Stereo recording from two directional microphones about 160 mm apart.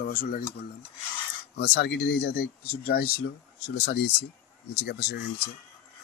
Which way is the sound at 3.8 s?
90° left.